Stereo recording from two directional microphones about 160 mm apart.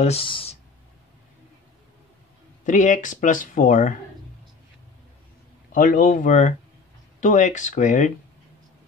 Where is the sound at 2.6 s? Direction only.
50° left (ahead or behind).